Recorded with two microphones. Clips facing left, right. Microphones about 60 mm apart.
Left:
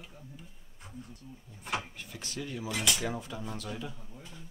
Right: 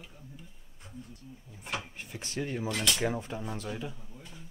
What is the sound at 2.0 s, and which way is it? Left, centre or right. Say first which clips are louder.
Speech: right 4 dB; right.